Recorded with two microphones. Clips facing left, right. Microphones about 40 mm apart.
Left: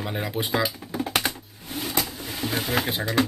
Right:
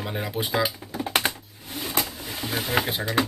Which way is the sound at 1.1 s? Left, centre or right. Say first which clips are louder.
Right 2 dB; right.